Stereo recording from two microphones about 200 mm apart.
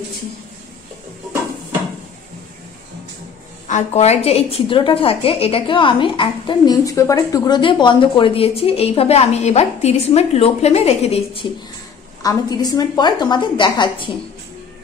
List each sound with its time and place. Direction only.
3.6 s a woman's voice: 35° left (ahead or behind)
12.2 s a woman's voice: 20° left (ahead or behind)